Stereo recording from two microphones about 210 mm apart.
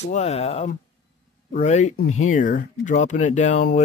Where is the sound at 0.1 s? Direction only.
30° left (ahead or behind).